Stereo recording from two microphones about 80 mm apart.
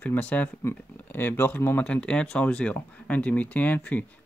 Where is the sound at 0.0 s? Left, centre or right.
Centre.